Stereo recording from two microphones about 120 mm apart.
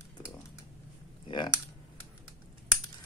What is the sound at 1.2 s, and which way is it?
Speech, 40° left (ahead or behind).